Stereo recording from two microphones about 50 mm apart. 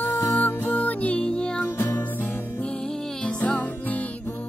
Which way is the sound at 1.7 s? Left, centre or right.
Left.